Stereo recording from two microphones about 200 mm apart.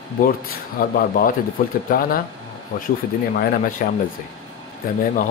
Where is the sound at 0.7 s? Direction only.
45° left (ahead or behind).